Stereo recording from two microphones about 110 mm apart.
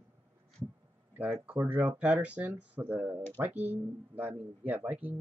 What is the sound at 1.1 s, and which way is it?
Speech, 15° right (ahead or behind).